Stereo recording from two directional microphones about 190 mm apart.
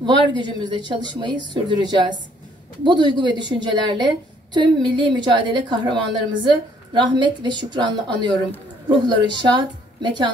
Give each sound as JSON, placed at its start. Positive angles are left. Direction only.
{"t": 0.0, "sound": "a woman's voice", "side_deg": -25}